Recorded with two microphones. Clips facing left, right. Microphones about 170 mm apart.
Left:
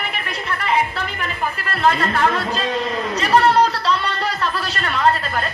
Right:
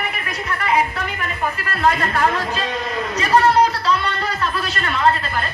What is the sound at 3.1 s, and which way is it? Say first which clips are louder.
Chatter: even; 30° left (ahead or behind).